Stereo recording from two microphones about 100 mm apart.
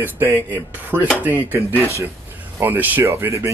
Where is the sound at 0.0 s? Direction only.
20° right (ahead or behind).